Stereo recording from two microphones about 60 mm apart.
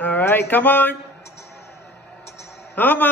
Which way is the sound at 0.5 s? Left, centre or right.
Left.